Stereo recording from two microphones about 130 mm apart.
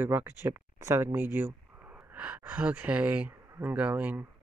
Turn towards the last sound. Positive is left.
turn(degrees=-10)  # may be behind; listen again after turning